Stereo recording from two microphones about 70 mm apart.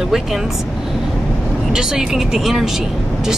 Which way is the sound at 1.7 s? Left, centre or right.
Centre.